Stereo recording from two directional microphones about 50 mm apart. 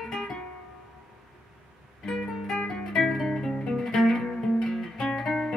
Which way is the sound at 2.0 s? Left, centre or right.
Centre.